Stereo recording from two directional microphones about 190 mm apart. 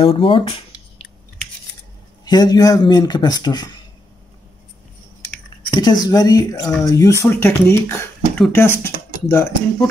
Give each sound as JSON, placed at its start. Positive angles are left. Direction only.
{"t": 0.0, "sound": "speech", "side_deg": 30}
{"t": 2.2, "sound": "speech", "side_deg": 20}
{"t": 5.8, "sound": "speech", "side_deg": 20}